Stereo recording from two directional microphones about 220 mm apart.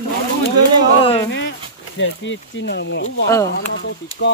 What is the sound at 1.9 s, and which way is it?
Speech, 55° left (ahead or behind).